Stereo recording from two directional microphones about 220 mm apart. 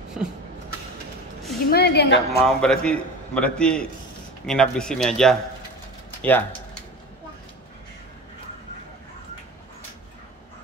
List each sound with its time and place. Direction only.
0.2 s a sound: centre (ahead or behind)
1.7 s a woman's voice: 50° left (ahead or behind)
2.4 s a man's voice: 5° left (ahead or behind)